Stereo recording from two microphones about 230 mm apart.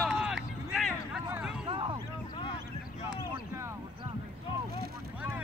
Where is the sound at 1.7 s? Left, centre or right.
Right.